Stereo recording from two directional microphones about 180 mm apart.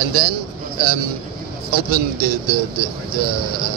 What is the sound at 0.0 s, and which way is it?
Speech, 55° right (ahead or behind).